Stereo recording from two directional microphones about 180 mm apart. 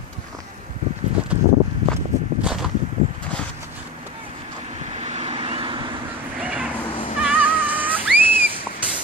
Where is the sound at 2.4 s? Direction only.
5° right (ahead or behind).